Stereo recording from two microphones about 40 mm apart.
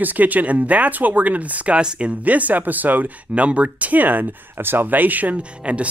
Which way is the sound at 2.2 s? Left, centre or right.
Right.